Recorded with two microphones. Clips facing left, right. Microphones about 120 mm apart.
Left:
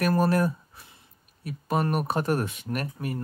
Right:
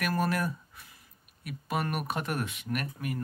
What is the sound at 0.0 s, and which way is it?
Speech, 35° left (ahead or behind).